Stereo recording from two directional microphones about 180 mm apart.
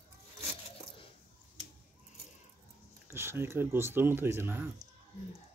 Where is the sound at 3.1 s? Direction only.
15° right (ahead or behind).